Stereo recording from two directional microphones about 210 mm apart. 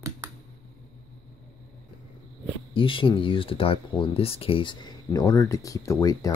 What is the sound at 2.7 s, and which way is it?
Speech, 25° left (ahead or behind).